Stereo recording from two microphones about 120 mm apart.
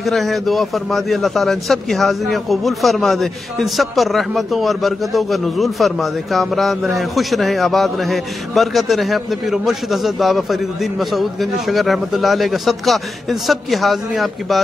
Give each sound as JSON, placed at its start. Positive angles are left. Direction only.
{"t": 0.0, "sound": "a man's voice", "side_deg": 0}